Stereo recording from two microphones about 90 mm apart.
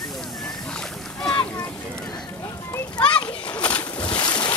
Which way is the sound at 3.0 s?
15° left (ahead or behind).